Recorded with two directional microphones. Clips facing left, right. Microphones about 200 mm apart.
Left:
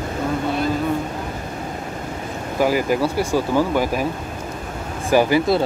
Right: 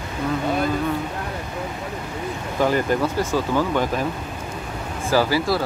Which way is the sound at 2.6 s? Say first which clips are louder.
Left 2 dB; 10° left (ahead or behind).